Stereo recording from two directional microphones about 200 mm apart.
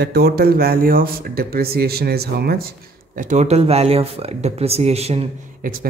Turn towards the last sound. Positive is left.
turn(degrees=-30)  # may be behind; listen again after turning